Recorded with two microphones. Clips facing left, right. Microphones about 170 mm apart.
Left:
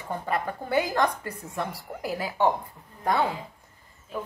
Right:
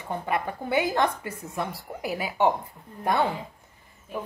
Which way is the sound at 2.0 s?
20° right (ahead or behind).